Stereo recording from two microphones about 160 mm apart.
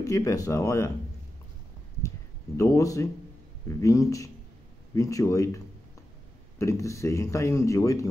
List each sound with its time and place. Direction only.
0.0 s speech: 20° left (ahead or behind)
2.0 s a sound: 20° left (ahead or behind)
3.6 s speech: 20° left (ahead or behind)
6.6 s speech: 20° left (ahead or behind)